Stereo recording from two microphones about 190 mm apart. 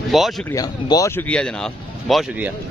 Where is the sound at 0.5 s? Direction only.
20° left (ahead or behind).